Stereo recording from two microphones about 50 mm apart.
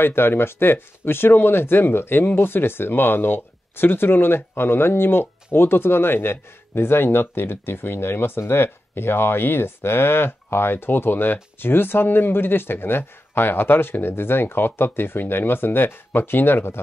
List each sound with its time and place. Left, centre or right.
0.0 s speech: left